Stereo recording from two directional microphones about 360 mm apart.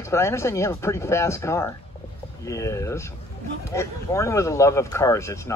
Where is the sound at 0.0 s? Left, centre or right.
Centre.